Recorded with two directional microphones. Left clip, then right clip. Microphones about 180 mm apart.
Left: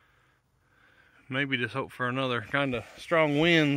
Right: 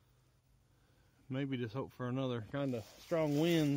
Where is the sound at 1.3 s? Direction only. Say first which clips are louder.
Left 12 dB; 10° left (ahead or behind).